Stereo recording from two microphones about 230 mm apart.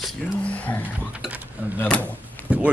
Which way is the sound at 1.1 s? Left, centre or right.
Centre.